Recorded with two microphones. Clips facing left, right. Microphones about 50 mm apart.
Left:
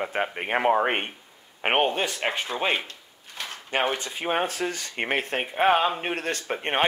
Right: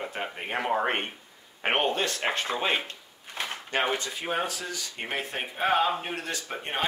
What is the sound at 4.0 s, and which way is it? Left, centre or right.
Speech, left.